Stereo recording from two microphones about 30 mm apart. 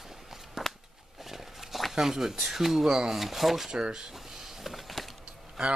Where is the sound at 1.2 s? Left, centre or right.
Centre.